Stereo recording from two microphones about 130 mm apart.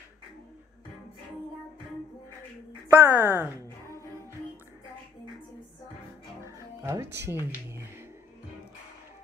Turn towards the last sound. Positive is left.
turn(degrees=-20)  # may be behind; listen again after turning